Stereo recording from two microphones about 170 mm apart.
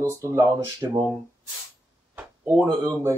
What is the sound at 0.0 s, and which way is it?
Speech, 15° right (ahead or behind).